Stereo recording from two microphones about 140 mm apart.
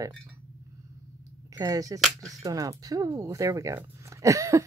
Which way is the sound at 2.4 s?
25° right (ahead or behind).